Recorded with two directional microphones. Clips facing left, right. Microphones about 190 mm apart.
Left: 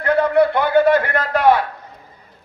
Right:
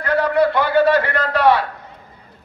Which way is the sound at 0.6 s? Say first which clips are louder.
Left 1 dB; 50° left (ahead or behind).